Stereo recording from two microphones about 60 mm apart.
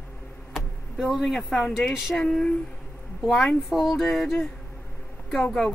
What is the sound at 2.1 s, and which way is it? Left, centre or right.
Speech, centre.